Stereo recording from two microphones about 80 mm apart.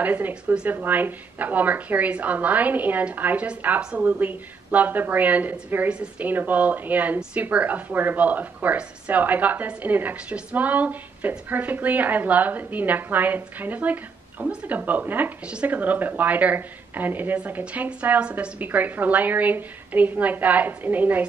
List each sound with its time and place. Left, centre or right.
0.0 s speech: right